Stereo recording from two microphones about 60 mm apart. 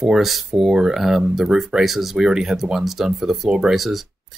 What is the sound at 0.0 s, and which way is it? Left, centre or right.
Speech, centre.